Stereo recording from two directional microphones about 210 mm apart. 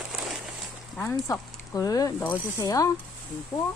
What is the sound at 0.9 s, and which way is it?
Speech, 10° left (ahead or behind).